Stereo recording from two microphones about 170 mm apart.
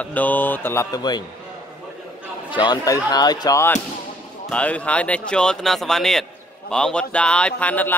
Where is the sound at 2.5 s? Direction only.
25° left (ahead or behind).